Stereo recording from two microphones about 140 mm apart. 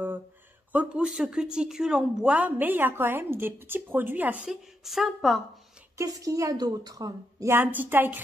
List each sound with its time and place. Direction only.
0.7 s a woman's voice: 5° right (ahead or behind)
5.9 s a woman's voice: 25° right (ahead or behind)